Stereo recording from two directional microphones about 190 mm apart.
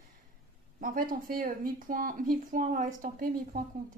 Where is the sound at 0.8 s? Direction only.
45° right (ahead or behind).